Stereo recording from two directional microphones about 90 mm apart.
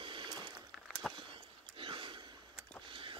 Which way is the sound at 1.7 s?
75° right (ahead or behind).